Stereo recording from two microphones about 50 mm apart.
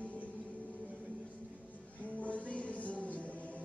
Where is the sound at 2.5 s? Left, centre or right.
Left.